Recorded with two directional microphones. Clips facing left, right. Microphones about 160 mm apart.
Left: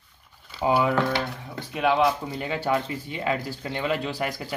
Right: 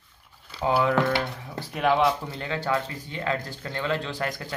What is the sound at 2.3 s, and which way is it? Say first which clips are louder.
Speech: left 2 dB; 15° left (ahead or behind).